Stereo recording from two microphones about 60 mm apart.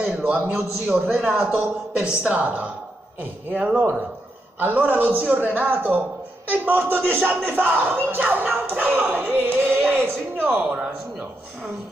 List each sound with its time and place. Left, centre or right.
0.0 s a sound: right
0.6 s a man's voice: right
4.6 s a man's voice: right